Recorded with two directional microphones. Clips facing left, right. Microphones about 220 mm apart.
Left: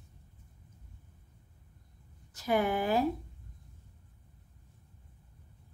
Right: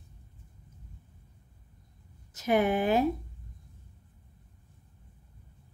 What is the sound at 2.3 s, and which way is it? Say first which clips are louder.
Speech: right 4 dB; 20° right (ahead or behind).